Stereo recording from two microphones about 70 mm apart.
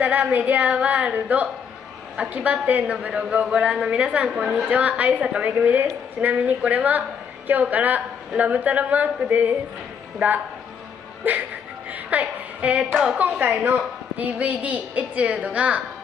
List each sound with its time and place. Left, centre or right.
0.0 s a woman's voice: right
4.6 s a woman's voice: right
13.5 s a woman's voice: right